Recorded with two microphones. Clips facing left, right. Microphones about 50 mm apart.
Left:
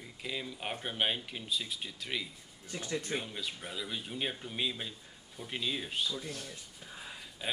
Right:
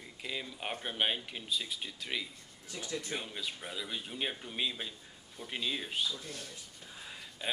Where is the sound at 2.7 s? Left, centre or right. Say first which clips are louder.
Left 3 dB; left.